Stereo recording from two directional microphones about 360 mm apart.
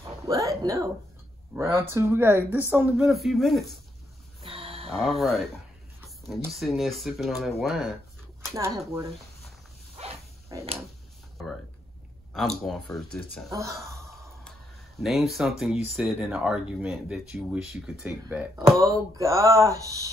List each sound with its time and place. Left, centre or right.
0.3 s speech: centre
4.4 s a sound: centre
4.8 s speech: centre
9.9 s dog: centre
12.6 s speech: centre